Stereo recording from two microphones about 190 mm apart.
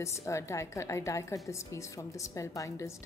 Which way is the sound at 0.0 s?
15° left (ahead or behind).